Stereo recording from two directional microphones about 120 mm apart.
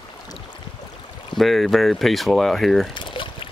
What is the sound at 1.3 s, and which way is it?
Speech, centre (ahead or behind).